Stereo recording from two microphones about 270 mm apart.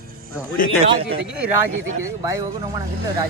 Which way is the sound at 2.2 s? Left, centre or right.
Centre.